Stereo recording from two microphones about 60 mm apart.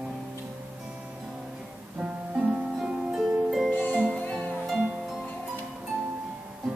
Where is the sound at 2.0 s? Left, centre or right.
Centre.